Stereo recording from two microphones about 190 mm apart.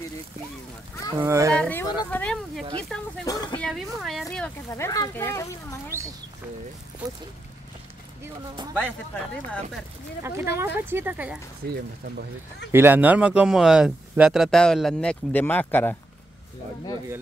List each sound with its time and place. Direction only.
1.1 s speech: 15° right (ahead or behind)
1.6 s speech: 10° left (ahead or behind)
3.3 s a sound: 20° left (ahead or behind)
3.5 s a sound: centre (ahead or behind)
4.6 s speech: 15° left (ahead or behind)
10.2 s speech: 15° right (ahead or behind)
11.6 s speech: 55° right (ahead or behind)
12.7 s speech: 10° right (ahead or behind); by 16.0 s 10° left (ahead or behind)